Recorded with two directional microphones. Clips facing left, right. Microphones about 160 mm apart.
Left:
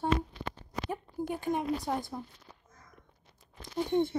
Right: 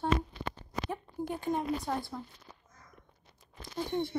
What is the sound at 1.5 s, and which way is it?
Speech, 15° left (ahead or behind).